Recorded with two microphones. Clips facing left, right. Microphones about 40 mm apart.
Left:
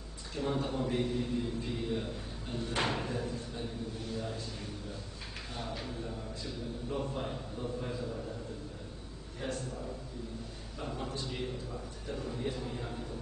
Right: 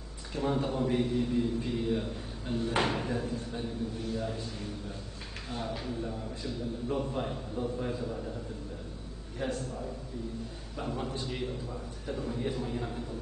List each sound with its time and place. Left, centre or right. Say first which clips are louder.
0.3 s a man's voice: right 3 dB; centre
5.5 s a man's voice: right 5 dB; centre
9.4 s a man's voice: right 4 dB; centre